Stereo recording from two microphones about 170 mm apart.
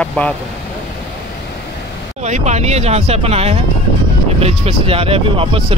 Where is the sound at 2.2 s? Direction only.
45° right (ahead or behind).